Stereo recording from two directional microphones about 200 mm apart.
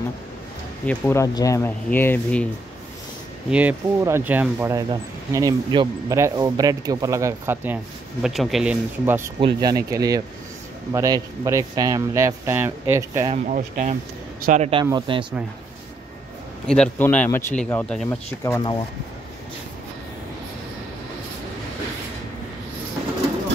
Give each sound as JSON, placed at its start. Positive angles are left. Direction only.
{"t": 0.8, "sound": "speech", "side_deg": 10}
{"t": 3.4, "sound": "speech", "side_deg": -5}
{"t": 9.4, "sound": "speech", "side_deg": -20}
{"t": 13.3, "sound": "speech", "side_deg": -35}
{"t": 16.6, "sound": "speech", "side_deg": 5}
{"t": 18.4, "sound": "speech", "side_deg": 20}